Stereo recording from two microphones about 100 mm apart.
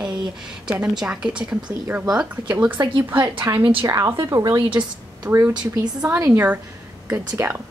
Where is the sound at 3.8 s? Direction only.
35° right (ahead or behind).